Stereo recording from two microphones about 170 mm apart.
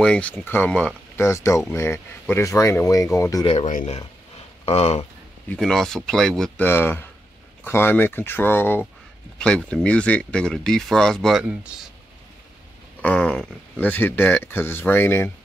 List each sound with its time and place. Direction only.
0.0 s speech: 5° left (ahead or behind)
3.4 s speech: 45° left (ahead or behind)
5.5 s speech: centre (ahead or behind)
13.0 s speech: 5° left (ahead or behind)